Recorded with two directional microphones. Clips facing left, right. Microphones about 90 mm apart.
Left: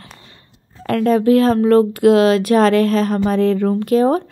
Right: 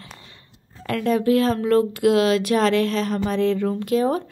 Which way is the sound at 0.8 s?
45° left (ahead or behind).